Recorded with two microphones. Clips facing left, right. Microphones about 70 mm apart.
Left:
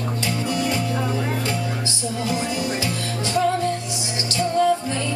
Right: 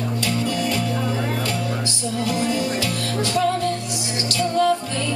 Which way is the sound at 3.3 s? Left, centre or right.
Left.